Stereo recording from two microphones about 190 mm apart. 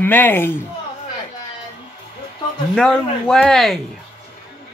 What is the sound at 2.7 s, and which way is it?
Speech, 5° left (ahead or behind).